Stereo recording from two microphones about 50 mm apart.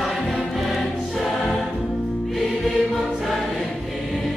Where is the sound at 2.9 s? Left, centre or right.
Centre.